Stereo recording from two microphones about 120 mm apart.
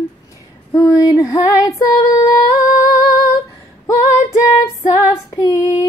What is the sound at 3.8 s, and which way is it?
Female singing, 25° left (ahead or behind).